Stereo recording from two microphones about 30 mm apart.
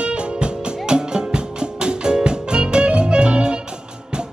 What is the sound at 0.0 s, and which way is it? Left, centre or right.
Music, right.